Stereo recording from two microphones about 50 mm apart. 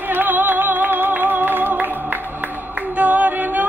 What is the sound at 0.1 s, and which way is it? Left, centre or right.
Flamenco, right.